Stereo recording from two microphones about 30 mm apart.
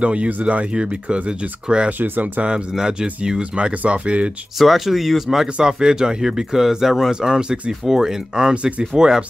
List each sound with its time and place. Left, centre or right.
0.0 s speech: right
0.7 s speech: right
1.9 s speech: right
2.7 s speech: right
3.8 s speech: right
4.6 s speech: centre
5.6 s speech: centre
7.1 s speech: right